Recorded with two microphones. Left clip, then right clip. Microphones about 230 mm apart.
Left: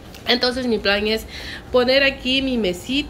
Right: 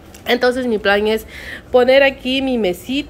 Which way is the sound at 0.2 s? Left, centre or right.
Centre.